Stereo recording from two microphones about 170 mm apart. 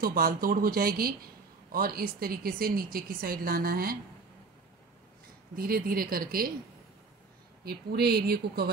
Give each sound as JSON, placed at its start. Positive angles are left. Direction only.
{"t": 0.0, "sound": "speech", "side_deg": -60}
{"t": 5.6, "sound": "speech", "side_deg": -60}
{"t": 7.6, "sound": "speech", "side_deg": -70}